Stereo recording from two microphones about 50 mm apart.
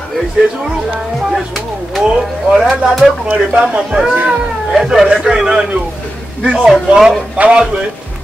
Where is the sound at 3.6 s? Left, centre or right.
Right.